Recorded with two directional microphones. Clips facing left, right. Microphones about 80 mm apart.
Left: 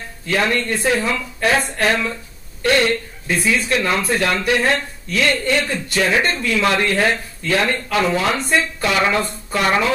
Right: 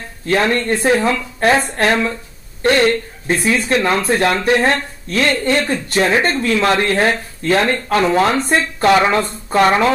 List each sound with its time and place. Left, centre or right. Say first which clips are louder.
0.3 s speech: right 4 dB; right
9.0 s speech: right 3 dB; right